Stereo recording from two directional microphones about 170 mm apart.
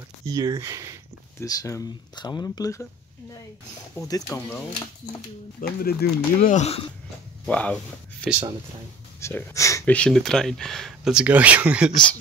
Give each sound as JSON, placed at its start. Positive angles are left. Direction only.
{"t": 0.3, "sound": "speech", "side_deg": -20}
{"t": 1.4, "sound": "speech", "side_deg": 20}
{"t": 4.3, "sound": "speech", "side_deg": 20}
{"t": 5.6, "sound": "speech", "side_deg": 65}
{"t": 6.5, "sound": "speech", "side_deg": 40}
{"t": 7.4, "sound": "speech", "side_deg": 5}
{"t": 9.9, "sound": "speech", "side_deg": 5}